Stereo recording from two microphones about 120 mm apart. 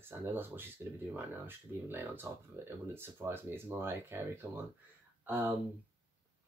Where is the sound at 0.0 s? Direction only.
20° right (ahead or behind).